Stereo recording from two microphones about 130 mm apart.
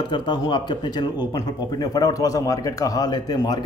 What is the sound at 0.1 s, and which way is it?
Speech, 35° left (ahead or behind).